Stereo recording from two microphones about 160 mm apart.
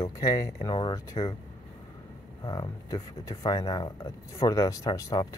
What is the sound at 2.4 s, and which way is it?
Speech, 25° left (ahead or behind).